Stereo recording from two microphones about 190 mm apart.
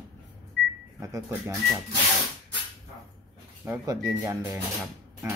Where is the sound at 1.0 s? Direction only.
15° right (ahead or behind).